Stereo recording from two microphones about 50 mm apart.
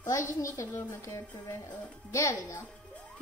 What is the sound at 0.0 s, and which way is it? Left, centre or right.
A child's voice, left.